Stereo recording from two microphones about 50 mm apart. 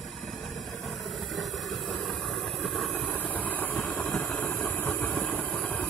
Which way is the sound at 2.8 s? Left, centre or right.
Left.